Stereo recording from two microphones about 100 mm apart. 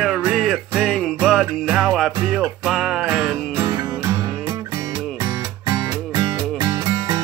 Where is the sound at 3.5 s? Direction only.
35° right (ahead or behind).